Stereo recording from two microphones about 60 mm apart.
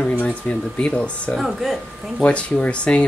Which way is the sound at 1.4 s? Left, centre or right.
Centre.